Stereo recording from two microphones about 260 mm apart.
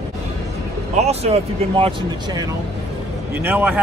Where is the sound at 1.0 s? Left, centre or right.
Right.